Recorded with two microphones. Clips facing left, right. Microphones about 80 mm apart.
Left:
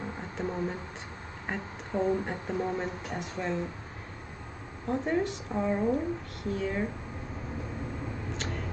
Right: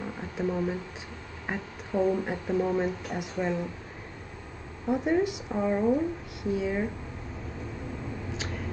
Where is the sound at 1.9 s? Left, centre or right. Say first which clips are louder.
Right 3 dB; centre.